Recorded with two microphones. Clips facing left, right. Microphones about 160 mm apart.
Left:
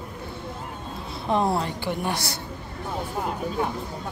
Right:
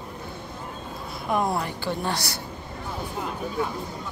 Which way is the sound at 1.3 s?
25° left (ahead or behind).